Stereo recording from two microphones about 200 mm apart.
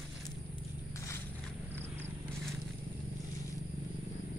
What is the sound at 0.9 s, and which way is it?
Walk, 15° left (ahead or behind).